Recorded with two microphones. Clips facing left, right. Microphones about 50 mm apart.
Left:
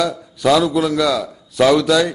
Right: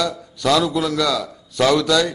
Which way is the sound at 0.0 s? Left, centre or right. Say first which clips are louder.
Left 4 dB; centre.